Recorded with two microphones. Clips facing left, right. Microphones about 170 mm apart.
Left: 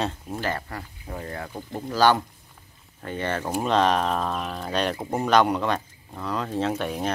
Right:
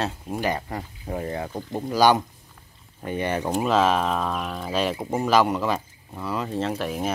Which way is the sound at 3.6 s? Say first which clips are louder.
Even; 5° right (ahead or behind).